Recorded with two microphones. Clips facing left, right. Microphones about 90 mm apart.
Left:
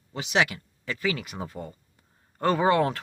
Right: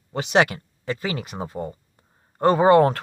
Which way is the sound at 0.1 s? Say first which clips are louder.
Right 6 dB; 45° right (ahead or behind).